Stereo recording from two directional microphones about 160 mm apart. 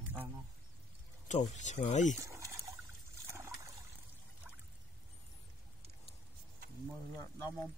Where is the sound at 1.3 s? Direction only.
50° left (ahead or behind).